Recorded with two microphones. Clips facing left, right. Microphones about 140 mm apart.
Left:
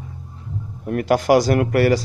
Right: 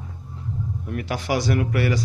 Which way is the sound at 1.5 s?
60° left (ahead or behind).